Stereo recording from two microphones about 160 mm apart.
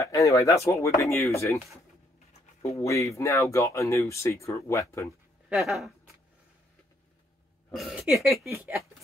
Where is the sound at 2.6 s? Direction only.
20° left (ahead or behind).